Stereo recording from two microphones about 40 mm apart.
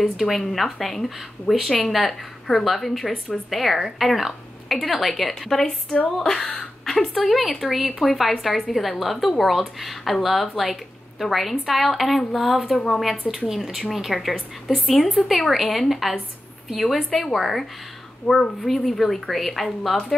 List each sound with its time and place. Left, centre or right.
0.0 s a woman's voice: centre
7.3 s speech: centre
12.7 s a woman's voice: centre
13.5 s speech: centre